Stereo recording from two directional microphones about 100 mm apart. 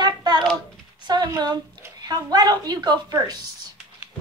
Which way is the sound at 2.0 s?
40° right (ahead or behind).